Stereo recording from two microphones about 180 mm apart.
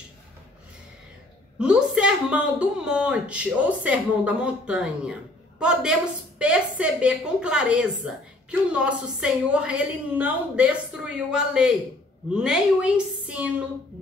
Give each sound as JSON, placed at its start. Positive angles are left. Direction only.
{"t": 1.6, "sound": "a woman's voice", "side_deg": -5}